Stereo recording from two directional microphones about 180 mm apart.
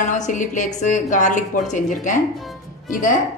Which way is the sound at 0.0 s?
45° left (ahead or behind).